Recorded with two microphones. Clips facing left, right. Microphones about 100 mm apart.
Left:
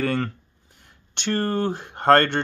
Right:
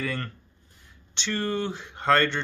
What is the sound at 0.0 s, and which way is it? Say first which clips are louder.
Speech: left 7 dB; 60° left (ahead or behind).